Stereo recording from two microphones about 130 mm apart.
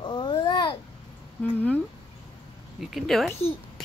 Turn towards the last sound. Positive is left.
turn(degrees=0)  # may be behind; listen again after turning